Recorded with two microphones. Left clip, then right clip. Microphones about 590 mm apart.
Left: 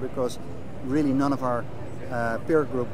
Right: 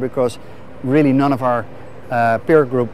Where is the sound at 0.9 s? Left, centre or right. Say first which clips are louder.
Right 10 dB; right.